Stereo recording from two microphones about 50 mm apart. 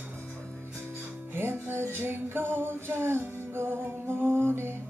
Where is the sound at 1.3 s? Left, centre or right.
Right.